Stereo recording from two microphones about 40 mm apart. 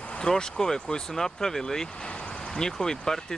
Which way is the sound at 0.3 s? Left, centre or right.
Centre.